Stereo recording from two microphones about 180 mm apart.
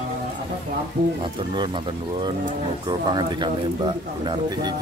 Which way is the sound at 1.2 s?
25° right (ahead or behind).